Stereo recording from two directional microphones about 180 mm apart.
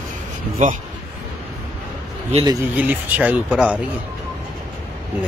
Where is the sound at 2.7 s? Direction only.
10° right (ahead or behind).